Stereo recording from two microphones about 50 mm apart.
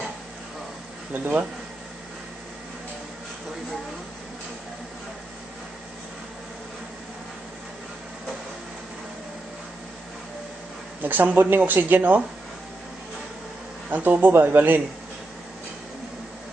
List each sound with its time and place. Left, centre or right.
1.1 s speech: right
11.0 s speech: right
13.8 s speech: right